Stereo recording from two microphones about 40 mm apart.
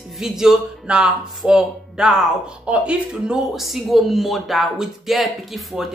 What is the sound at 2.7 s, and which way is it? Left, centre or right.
Speech, right.